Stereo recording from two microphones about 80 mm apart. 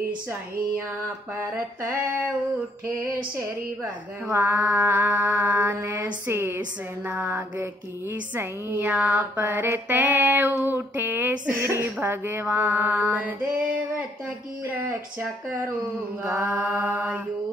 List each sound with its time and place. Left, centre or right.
4.3 s music: right
16.4 s music: right